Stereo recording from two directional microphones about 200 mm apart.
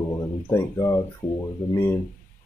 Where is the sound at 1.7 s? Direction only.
10° left (ahead or behind).